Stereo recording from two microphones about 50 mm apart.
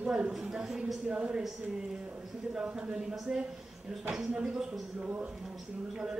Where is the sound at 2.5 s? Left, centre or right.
Centre.